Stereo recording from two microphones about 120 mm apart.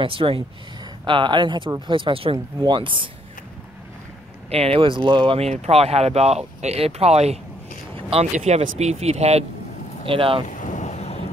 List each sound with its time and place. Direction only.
0.0 s speech: 50° right (ahead or behind)
4.5 s speech: 55° right (ahead or behind)
10.0 s speech: 50° right (ahead or behind)
10.6 s vehicle: 90° left; by 11.2 s 70° left (ahead or behind)